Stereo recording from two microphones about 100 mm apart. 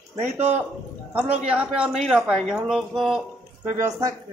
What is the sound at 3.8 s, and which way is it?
Speech, 35° right (ahead or behind).